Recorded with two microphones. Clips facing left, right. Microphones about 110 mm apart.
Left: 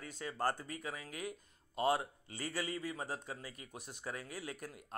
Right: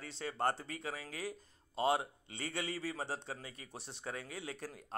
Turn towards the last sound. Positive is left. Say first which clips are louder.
# right 1 dB
turn(degrees=-30)  # may be behind; listen again after turning